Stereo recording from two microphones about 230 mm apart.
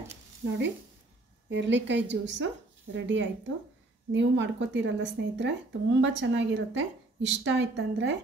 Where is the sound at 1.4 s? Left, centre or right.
Right.